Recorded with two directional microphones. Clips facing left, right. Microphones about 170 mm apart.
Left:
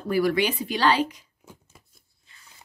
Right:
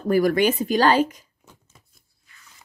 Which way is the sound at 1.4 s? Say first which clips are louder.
Left 8 dB; 10° left (ahead or behind).